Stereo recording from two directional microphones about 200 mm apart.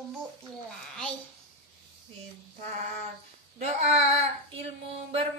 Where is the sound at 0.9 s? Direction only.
5° left (ahead or behind).